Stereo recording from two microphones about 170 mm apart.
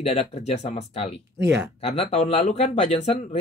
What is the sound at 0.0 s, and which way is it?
Speech, 40° left (ahead or behind).